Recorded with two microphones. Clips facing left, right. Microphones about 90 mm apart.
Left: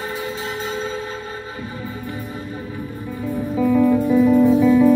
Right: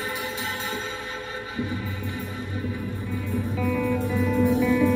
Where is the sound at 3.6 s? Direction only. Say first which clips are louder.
Left 10 dB; 20° left (ahead or behind).